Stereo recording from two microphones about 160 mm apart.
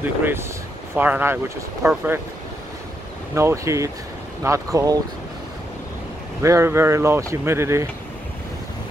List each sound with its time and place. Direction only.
0.0 s speech: 15° right (ahead or behind)
3.3 s speech: 20° right (ahead or behind)
6.4 s speech: 15° right (ahead or behind)